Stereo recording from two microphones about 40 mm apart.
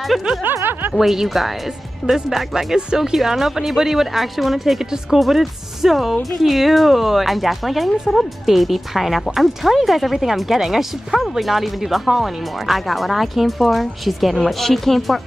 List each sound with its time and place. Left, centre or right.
0.4 s speech: right
0.9 s a woman's voice: centre
3.2 s a woman's voice: centre